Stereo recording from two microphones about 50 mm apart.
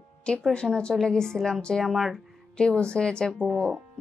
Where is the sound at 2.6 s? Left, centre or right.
Centre.